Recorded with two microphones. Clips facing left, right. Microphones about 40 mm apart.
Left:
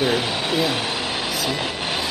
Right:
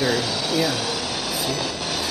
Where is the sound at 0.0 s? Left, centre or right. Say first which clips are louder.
Left 1 dB; left.